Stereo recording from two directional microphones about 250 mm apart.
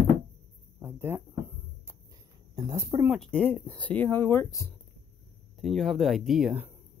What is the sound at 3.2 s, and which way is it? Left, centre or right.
Speech, centre.